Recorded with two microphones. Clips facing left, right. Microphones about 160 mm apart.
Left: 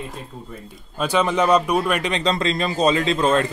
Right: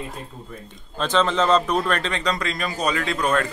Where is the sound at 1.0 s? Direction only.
10° left (ahead or behind).